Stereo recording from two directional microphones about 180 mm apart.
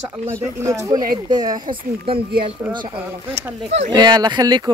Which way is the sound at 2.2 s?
60° right (ahead or behind).